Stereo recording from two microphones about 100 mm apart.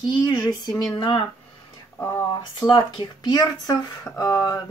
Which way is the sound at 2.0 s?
30° left (ahead or behind).